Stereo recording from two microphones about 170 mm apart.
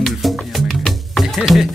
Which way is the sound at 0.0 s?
Centre (ahead or behind).